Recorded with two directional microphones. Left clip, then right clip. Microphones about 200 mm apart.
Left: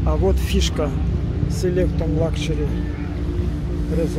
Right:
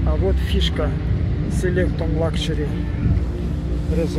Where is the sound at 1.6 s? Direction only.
15° left (ahead or behind).